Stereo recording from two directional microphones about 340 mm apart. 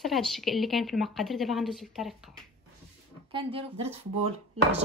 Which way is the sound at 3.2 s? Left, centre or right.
Centre.